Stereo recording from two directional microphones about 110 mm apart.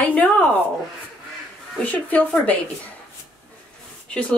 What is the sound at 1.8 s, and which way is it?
Speech, 15° left (ahead or behind).